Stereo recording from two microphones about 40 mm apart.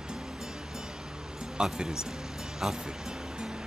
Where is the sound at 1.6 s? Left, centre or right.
Centre.